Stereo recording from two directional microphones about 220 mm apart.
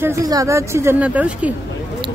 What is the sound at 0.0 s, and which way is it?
A woman's voice, 15° right (ahead or behind).